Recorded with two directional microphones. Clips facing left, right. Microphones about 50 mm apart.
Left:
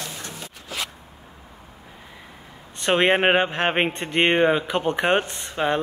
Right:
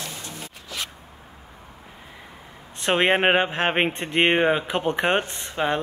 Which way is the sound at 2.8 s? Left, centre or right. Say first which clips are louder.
Left 1 dB; centre.